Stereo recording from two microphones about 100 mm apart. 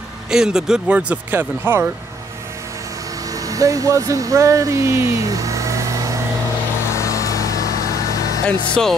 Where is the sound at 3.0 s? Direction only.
35° right (ahead or behind).